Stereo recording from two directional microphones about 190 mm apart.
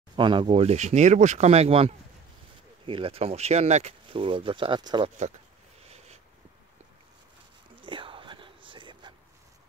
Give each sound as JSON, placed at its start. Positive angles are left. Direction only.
{"t": 0.1, "sound": "speech", "side_deg": -25}
{"t": 5.9, "sound": "a sound", "side_deg": -35}
{"t": 7.8, "sound": "whispering", "side_deg": -25}